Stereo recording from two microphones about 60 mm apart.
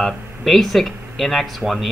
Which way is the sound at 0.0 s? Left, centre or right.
Centre.